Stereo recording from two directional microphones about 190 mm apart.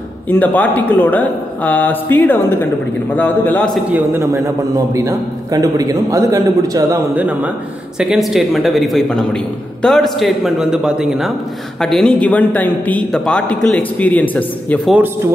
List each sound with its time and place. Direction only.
0.3 s a man's voice: 10° left (ahead or behind)
3.9 s a man's voice: 10° right (ahead or behind); by 15.0 s 10° left (ahead or behind)